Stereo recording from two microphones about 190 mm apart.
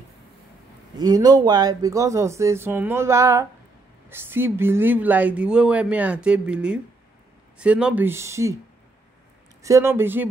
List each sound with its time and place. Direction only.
0.9 s speech: 20° right (ahead or behind)
9.6 s speech: 15° right (ahead or behind)